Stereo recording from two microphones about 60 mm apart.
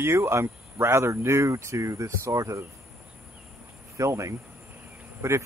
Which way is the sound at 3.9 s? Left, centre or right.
Right.